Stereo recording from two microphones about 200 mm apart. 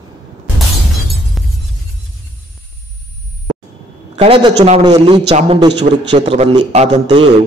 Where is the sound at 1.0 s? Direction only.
Centre (ahead or behind).